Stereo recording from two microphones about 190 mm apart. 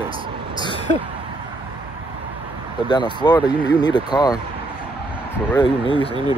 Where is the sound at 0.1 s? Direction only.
25° right (ahead or behind).